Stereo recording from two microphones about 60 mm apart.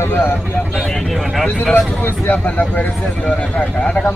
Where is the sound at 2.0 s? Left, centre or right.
Left.